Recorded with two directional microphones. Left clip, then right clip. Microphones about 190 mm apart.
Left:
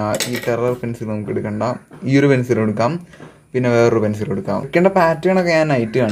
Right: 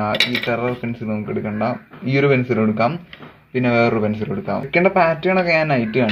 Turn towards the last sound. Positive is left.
turn(degrees=20)  # may be behind; listen again after turning